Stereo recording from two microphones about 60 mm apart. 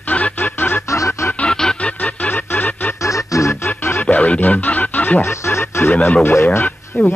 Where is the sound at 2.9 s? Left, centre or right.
Left.